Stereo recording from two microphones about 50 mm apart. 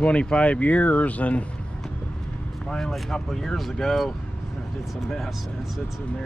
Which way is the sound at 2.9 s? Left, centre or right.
Centre.